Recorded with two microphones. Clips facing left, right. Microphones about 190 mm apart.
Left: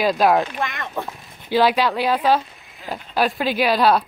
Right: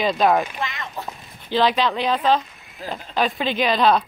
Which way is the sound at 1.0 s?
55° left (ahead or behind).